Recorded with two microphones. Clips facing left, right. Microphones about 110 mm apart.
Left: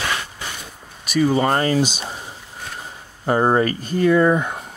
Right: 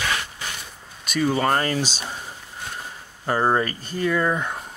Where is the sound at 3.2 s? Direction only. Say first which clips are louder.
Left 4 dB; 20° left (ahead or behind).